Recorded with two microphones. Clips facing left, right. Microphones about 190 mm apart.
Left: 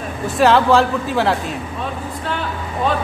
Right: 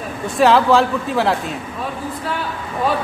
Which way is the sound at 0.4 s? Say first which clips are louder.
Even; centre (ahead or behind).